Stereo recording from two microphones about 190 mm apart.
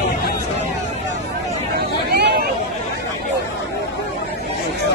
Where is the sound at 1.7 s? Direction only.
55° right (ahead or behind).